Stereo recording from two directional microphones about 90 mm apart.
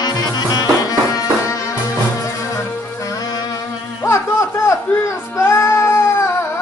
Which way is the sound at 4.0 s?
30° left (ahead or behind).